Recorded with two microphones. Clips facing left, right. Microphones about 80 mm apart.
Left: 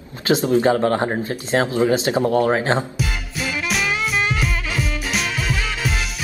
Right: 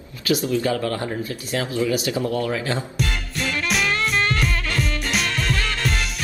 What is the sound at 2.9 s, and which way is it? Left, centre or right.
Music, centre.